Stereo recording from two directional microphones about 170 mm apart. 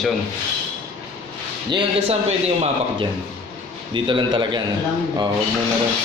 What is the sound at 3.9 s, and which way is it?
Speech, 25° right (ahead or behind).